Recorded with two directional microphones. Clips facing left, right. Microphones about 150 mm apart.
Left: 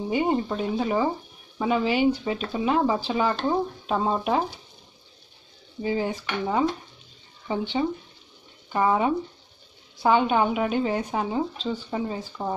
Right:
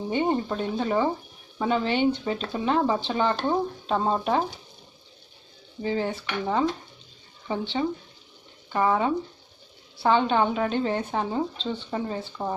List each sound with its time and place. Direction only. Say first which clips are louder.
0.1 s speech: left 1 dB; 10° left (ahead or behind)
5.8 s speech: left 1 dB; 15° left (ahead or behind)